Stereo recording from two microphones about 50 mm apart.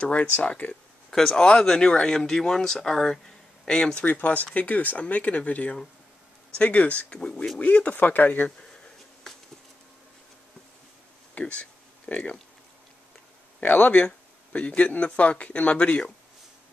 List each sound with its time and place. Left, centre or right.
0.1 s speech: left
1.1 s speech: centre
4.0 s speech: left
7.1 s speech: centre; by 8.5 s left
11.3 s speech: left
13.6 s speech: left